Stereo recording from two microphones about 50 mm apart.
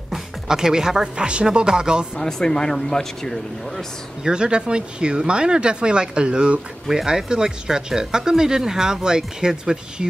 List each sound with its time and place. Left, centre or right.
0.1 s speech: centre
2.1 s speech: centre
4.2 s speech: centre
6.9 s speech: centre